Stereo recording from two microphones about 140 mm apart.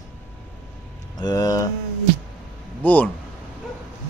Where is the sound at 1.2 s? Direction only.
25° left (ahead or behind).